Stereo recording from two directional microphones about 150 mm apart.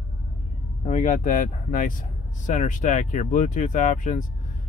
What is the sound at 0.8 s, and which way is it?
Speech, 55° left (ahead or behind).